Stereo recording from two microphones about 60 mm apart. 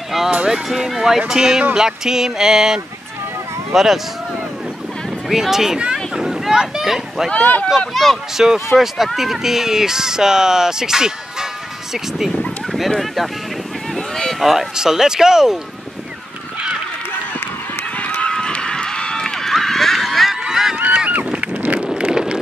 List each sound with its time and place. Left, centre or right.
0.5 s speech: centre
5.3 s speech: centre
7.2 s speech: left
7.9 s speech: centre
8.4 s speech: centre
12.7 s speech: centre
13.9 s boat: centre
14.4 s speech: centre
17.9 s run: left; by 20.3 s centre
20.4 s honk: centre
20.7 s goose: right
21.9 s vehicle: centre